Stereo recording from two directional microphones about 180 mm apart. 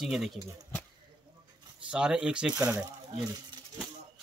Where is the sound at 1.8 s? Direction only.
5° right (ahead or behind).